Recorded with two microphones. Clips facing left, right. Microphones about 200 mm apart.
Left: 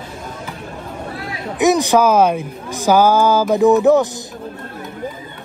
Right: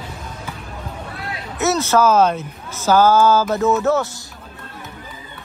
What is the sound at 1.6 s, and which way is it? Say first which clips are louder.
Speech: left 3 dB; 15° left (ahead or behind).